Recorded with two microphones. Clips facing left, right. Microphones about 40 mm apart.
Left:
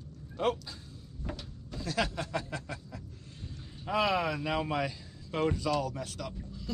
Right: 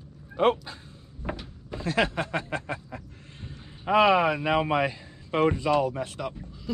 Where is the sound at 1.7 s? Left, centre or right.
Right.